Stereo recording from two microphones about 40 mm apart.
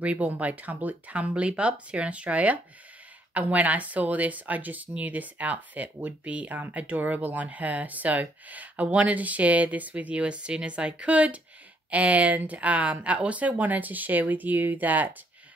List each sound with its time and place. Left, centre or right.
0.0 s speech: right